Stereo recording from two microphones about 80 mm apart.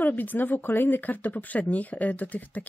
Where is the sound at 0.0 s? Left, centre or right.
Left.